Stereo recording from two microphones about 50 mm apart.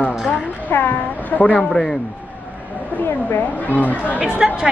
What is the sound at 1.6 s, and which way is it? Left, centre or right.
Speech, centre.